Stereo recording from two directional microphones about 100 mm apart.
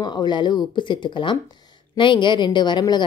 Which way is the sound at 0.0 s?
45° left (ahead or behind).